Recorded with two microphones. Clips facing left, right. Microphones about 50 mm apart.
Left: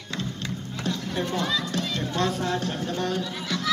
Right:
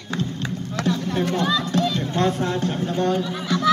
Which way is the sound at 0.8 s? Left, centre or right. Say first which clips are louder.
Right 7 dB; right.